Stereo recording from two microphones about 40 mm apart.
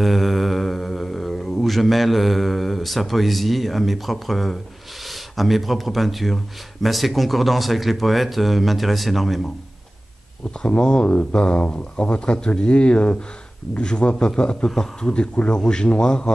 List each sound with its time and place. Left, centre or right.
0.0 s mantra: centre
5.0 s speech: centre
10.7 s speech: left